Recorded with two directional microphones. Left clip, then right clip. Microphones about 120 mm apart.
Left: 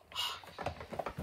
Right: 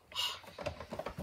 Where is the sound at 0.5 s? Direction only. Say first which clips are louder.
Left 1 dB; 5° left (ahead or behind).